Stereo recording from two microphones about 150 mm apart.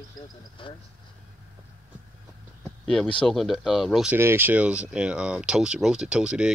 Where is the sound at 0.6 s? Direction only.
35° left (ahead or behind).